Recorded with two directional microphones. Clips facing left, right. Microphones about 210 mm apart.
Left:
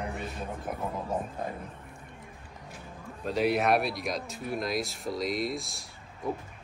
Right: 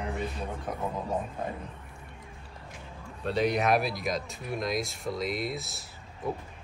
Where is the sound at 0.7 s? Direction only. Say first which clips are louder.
Even; 5° left (ahead or behind).